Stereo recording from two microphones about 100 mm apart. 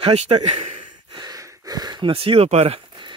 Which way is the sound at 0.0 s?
80° right.